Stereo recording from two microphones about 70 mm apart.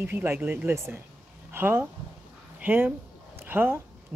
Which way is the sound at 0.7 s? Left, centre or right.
Right.